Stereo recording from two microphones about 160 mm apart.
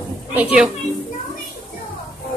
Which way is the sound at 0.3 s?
10° right (ahead or behind).